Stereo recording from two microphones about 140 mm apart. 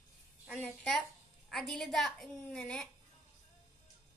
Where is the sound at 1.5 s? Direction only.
Centre (ahead or behind).